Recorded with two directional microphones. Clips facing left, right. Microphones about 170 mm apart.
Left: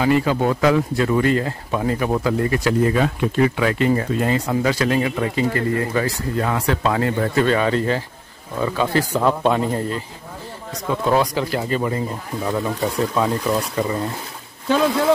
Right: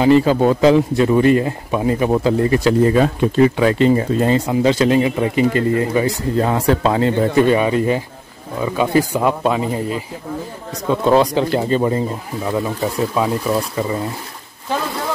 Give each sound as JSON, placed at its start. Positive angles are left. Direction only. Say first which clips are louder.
{"t": 0.0, "sound": "speech", "louder": "right 5 dB", "side_deg": -30}
{"t": 6.3, "sound": "speech", "louder": "right 5 dB", "side_deg": -30}
{"t": 7.4, "sound": "speech", "louder": "right 3 dB", "side_deg": -15}
{"t": 10.9, "sound": "speech", "louder": "right 5 dB", "side_deg": -25}
{"t": 12.4, "sound": "speech", "louder": "right 2 dB", "side_deg": -5}